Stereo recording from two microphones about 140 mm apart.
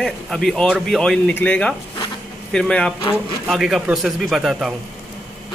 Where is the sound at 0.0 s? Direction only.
Centre (ahead or behind).